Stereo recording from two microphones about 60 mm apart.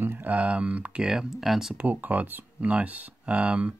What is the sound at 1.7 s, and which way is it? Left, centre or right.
Speech, right.